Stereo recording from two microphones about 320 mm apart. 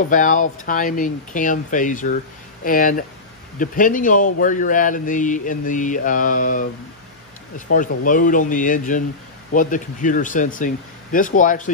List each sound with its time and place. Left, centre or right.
0.1 s a man's voice: left
7.6 s a man's voice: left